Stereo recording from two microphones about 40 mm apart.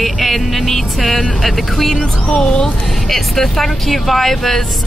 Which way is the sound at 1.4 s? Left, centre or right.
Centre.